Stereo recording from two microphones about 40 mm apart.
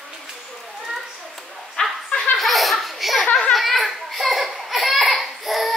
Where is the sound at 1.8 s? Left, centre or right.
Left.